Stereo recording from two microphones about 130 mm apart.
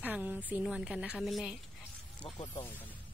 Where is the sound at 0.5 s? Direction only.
5° right (ahead or behind).